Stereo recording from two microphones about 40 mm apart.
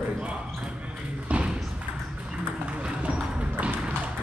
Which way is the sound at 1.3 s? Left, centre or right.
Right.